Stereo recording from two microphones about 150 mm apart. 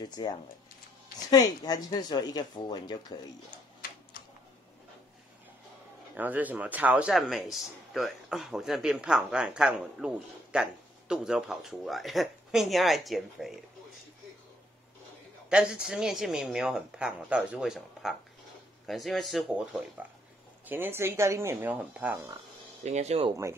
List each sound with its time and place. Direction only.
0.0 s speech: 30° left (ahead or behind)
6.1 s a man's voice: 10° right (ahead or behind)
15.5 s a man's voice: 5° right (ahead or behind)
22.8 s speech: 45° right (ahead or behind)